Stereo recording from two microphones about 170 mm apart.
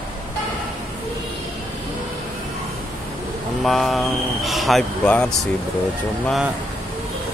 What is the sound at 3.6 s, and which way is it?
Speech, centre (ahead or behind).